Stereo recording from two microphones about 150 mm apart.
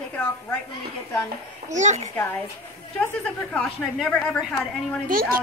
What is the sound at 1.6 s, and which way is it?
Speech, 50° right (ahead or behind).